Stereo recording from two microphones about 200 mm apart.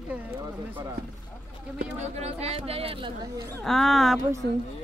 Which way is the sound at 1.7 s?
35° right (ahead or behind).